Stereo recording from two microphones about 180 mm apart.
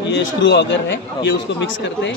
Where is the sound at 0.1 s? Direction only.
75° left (ahead or behind).